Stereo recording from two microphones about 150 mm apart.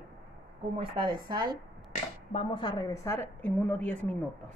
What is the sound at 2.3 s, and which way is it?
A woman's voice, 40° left (ahead or behind).